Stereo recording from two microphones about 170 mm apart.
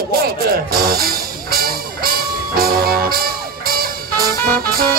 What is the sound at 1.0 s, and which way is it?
Music, 60° right (ahead or behind).